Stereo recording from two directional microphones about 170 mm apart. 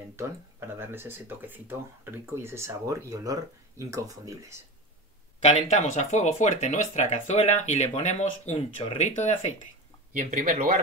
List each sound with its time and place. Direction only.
0.1 s speech: 15° right (ahead or behind)
5.4 s speech: 40° left (ahead or behind)
10.1 s speech: 55° right (ahead or behind)